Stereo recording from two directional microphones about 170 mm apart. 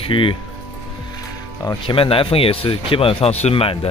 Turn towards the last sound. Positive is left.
turn(degrees=35)  # may be behind; listen again after turning